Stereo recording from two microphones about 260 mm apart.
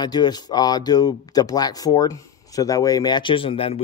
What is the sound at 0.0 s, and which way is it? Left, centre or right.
Speech, centre.